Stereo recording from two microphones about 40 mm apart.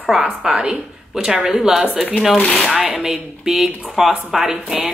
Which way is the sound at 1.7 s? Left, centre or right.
Centre.